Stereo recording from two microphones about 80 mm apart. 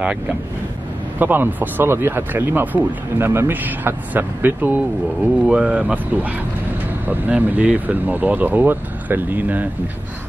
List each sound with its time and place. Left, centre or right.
1.2 s speech: right